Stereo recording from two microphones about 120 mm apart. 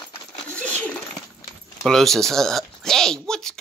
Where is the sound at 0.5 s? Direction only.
10° left (ahead or behind).